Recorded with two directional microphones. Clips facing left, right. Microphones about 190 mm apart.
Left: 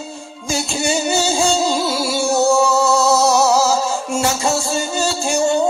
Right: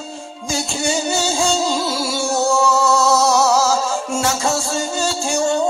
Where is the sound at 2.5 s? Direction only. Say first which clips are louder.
Left 1 dB; 5° left (ahead or behind).